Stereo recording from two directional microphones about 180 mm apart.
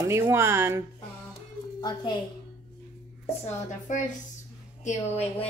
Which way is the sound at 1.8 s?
25° left (ahead or behind).